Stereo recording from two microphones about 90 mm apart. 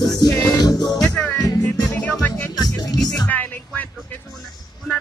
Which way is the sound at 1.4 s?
40° left (ahead or behind).